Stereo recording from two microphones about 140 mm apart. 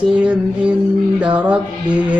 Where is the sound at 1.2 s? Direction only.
10° right (ahead or behind).